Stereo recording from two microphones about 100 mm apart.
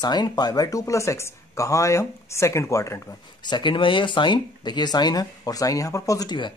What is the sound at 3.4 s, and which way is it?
Speech, 50° left (ahead or behind).